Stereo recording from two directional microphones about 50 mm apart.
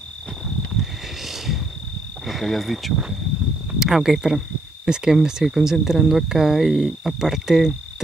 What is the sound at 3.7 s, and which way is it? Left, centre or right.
Speech, centre.